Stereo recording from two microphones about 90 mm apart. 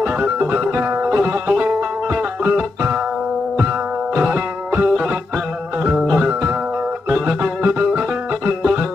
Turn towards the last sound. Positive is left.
turn(degrees=-15)  # may be behind; listen again after turning